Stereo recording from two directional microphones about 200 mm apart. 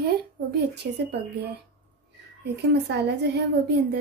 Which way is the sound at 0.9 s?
55° right (ahead or behind).